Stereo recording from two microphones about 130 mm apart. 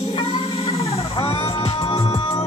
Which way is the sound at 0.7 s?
50° left (ahead or behind).